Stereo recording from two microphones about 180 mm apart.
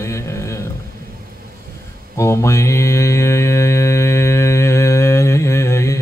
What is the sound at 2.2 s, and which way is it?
Mantra, 15° left (ahead or behind).